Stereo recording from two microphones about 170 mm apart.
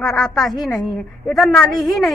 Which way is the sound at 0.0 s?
Centre (ahead or behind).